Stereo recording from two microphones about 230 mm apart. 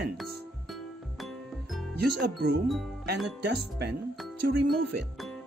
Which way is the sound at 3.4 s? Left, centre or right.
Right.